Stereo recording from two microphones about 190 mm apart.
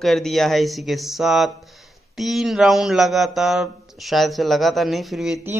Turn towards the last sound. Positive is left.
turn(degrees=0)  # may be behind; listen again after turning